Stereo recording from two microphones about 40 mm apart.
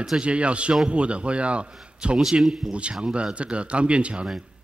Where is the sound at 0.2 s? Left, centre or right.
Right.